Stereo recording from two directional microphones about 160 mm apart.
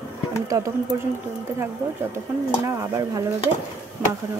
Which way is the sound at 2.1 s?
20° right (ahead or behind).